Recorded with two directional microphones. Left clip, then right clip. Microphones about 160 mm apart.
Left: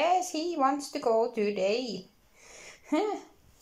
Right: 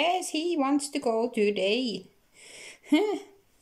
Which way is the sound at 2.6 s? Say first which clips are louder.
Right 4 dB; 20° right (ahead or behind).